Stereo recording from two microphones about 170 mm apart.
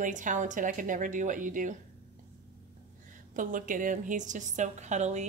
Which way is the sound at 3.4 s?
50° right (ahead or behind).